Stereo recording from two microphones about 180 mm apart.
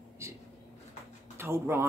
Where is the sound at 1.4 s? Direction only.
15° right (ahead or behind).